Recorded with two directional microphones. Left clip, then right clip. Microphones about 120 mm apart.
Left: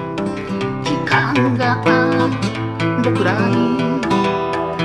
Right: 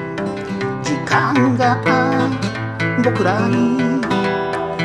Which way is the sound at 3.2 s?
50° right (ahead or behind).